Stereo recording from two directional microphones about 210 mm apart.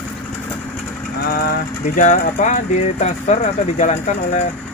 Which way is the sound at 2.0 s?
35° left (ahead or behind).